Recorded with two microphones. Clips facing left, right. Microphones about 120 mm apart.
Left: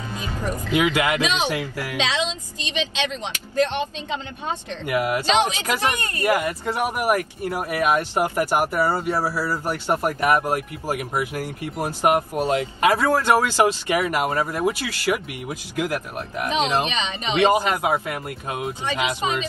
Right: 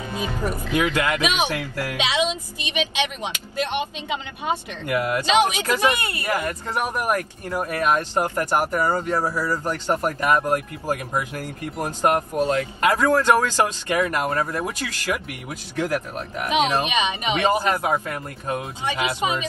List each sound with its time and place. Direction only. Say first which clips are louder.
0.7 s speech: left 2 dB; 15° left (ahead or behind)
1.2 s a woman's voice: even; 15° right (ahead or behind)
1.5 s speech: even; 15° left (ahead or behind)
2.0 s a woman's voice: right 1 dB; 15° right (ahead or behind)
4.8 s speech: left 1 dB; 15° left (ahead or behind)
5.3 s a woman's voice: right 3 dB; 15° right (ahead or behind)
6.2 s speech: left 6 dB; 15° left (ahead or behind)
16.4 s a woman's voice: right 1 dB; 15° right (ahead or behind)
17.5 s speech: right 2 dB; 15° left (ahead or behind)